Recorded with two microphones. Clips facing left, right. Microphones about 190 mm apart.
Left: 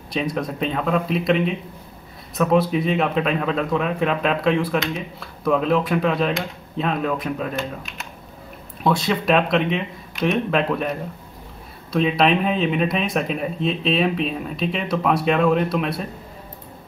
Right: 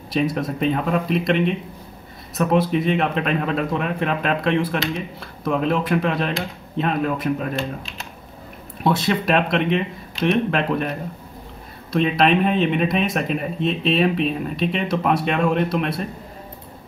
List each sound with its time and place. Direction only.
0.1 s speech: centre (ahead or behind)
7.5 s speech: 30° right (ahead or behind)
8.8 s speech: centre (ahead or behind)
11.9 s speech: centre (ahead or behind)